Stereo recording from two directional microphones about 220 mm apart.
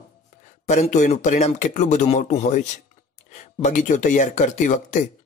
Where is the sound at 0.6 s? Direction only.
35° left (ahead or behind).